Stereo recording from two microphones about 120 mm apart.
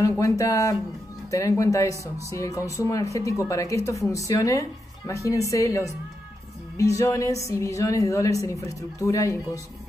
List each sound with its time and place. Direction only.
0.2 s a woman's voice: 25° left (ahead or behind)